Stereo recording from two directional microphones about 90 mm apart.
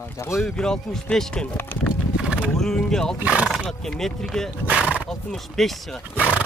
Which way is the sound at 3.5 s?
5° left (ahead or behind).